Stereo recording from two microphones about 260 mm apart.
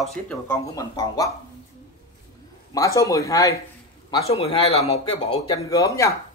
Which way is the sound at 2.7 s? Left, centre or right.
Centre.